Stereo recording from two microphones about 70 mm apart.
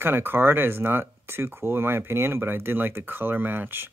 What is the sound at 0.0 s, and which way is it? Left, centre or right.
Speech, right.